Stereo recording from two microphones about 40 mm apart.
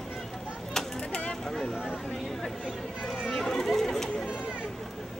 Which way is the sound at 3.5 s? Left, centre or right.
Centre.